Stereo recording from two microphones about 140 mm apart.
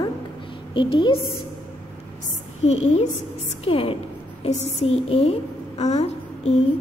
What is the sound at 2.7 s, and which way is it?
Speech, 50° left (ahead or behind).